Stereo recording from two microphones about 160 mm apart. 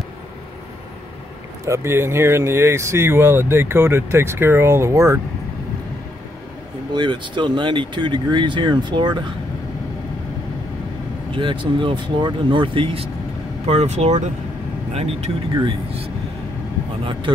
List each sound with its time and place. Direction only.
1.7 s speech: 15° right (ahead or behind)
6.9 s speech: 30° right (ahead or behind)
11.3 s speech: 30° right (ahead or behind)
17.0 s speech: 30° right (ahead or behind)